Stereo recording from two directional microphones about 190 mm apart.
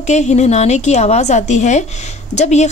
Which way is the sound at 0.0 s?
35° left (ahead or behind).